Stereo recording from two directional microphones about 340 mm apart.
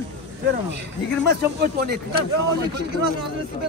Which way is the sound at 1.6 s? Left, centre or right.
Right.